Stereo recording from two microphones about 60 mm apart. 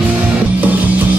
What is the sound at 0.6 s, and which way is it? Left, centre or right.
Music, right.